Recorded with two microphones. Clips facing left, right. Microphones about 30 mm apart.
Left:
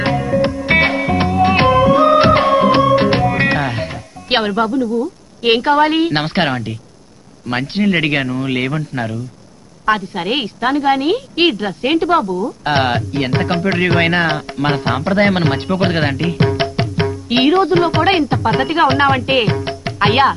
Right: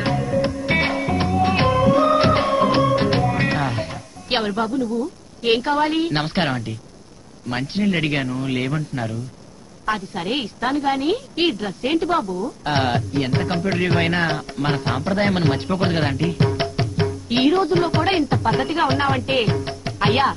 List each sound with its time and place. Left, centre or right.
0.0 s music: left
7.4 s a woman's voice: left